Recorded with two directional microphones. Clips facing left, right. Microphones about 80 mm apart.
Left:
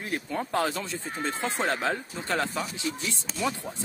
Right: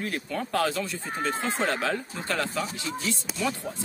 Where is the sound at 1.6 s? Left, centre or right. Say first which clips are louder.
Left 1 dB; left.